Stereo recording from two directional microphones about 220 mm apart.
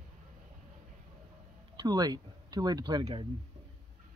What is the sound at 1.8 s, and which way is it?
Speech, 15° right (ahead or behind).